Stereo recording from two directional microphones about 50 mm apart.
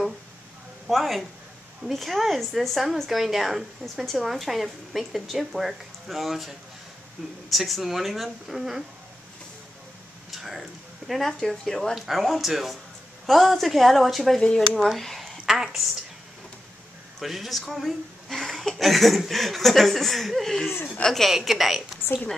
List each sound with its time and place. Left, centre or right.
0.8 s speech: centre
10.3 s speech: centre
11.9 s a woman's voice: centre
17.2 s speech: centre
22.0 s a woman's voice: left